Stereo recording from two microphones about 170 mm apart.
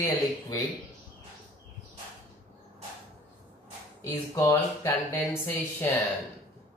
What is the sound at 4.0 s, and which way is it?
Speech, 20° left (ahead or behind).